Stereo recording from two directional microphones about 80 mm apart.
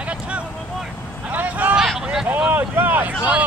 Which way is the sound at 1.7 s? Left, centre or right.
Centre.